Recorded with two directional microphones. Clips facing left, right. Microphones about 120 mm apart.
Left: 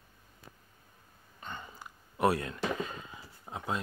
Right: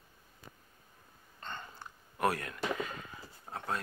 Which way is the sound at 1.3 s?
10° left (ahead or behind).